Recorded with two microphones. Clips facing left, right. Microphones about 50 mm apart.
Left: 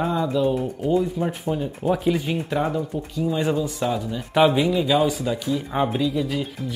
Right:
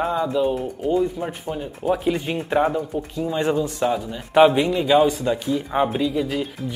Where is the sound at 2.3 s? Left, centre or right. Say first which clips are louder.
Right 4 dB; right.